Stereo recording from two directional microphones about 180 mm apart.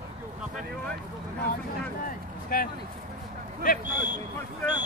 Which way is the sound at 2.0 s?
55° left (ahead or behind).